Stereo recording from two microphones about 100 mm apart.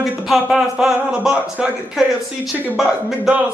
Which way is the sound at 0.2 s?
Centre (ahead or behind).